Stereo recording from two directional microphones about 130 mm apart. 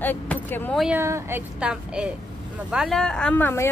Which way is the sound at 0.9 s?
20° right (ahead or behind).